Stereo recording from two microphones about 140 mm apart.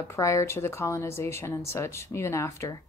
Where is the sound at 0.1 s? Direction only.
20° left (ahead or behind).